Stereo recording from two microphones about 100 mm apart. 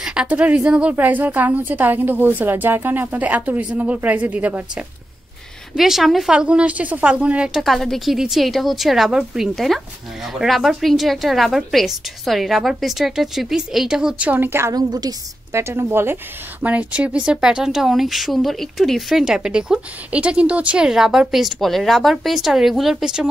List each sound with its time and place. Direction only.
0.0 s a woman's voice: 10° right (ahead or behind)
5.8 s speech: 5° right (ahead or behind); by 14.7 s 20° right (ahead or behind)
14.7 s a woman's voice: 40° right (ahead or behind)
15.6 s speech: 25° right (ahead or behind)
16.6 s speech: 15° right (ahead or behind)